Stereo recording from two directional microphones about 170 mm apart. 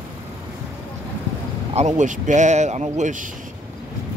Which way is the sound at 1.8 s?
45° right (ahead or behind).